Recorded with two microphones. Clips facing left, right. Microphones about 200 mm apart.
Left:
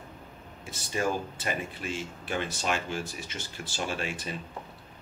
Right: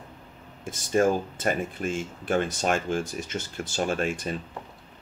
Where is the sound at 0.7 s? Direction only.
50° right (ahead or behind).